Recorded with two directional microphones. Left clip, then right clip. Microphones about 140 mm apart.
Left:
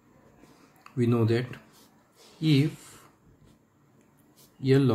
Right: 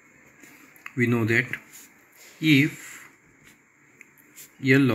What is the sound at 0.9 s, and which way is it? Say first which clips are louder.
Speech: right 4 dB; 15° right (ahead or behind).